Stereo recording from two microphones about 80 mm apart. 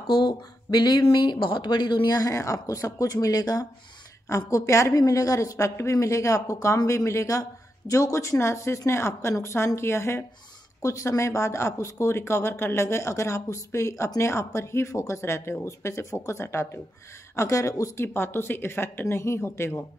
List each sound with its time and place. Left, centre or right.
0.0 s speech: left
2.0 s speech: left
18.0 s speech: left